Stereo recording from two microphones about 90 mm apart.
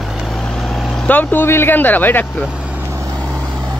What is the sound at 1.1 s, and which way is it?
Speech, 20° left (ahead or behind).